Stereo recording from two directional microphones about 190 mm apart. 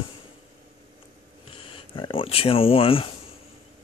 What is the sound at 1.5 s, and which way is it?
Speech, 30° left (ahead or behind).